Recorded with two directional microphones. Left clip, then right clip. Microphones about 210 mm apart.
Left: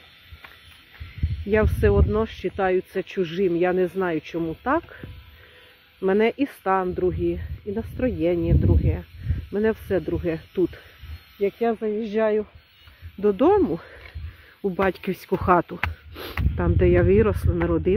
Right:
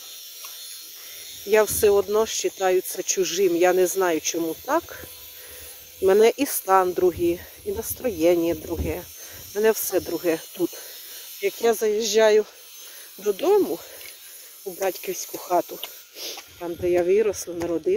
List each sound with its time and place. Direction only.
1.5 s speech: 25° right (ahead or behind)
6.0 s speech: 30° right (ahead or behind)
11.4 s speech: 45° right (ahead or behind)
13.2 s speech: 10° right (ahead or behind)
13.6 s speech: 5° left (ahead or behind)